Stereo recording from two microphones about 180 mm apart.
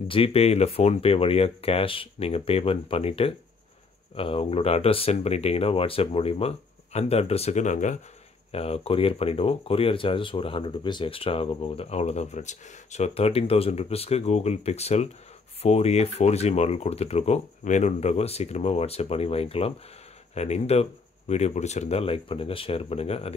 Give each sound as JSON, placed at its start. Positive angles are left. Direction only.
{"t": 0.1, "sound": "speech", "side_deg": 30}